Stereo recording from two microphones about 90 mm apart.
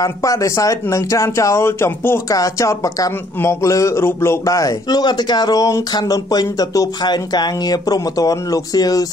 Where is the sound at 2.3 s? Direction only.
35° left (ahead or behind).